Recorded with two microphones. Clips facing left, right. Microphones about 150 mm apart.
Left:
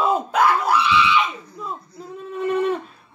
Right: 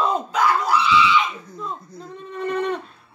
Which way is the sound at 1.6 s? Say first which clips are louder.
Even; 5° left (ahead or behind).